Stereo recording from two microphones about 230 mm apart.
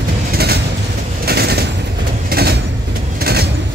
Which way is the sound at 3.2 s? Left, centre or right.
Right.